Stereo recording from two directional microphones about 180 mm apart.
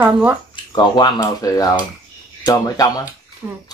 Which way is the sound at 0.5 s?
25° left (ahead or behind).